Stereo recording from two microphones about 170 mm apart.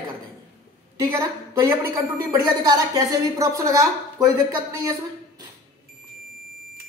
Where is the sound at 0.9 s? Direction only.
20° right (ahead or behind).